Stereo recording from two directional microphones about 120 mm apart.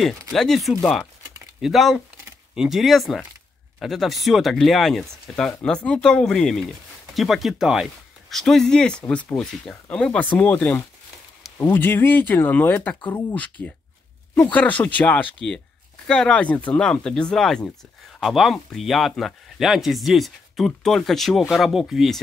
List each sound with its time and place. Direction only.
0.3 s speech: centre (ahead or behind)